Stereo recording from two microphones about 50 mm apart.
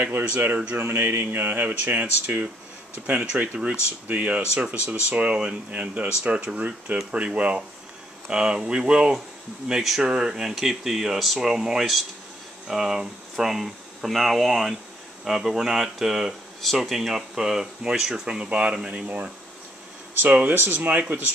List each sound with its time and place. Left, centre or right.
0.7 s speech: right
3.1 s speech: centre
19.0 s speech: right
20.5 s speech: right